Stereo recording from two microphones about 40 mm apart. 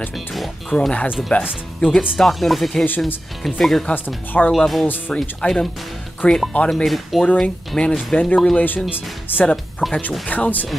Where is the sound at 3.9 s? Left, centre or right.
Left.